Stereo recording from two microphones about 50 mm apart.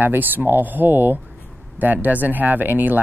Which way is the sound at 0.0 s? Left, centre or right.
Right.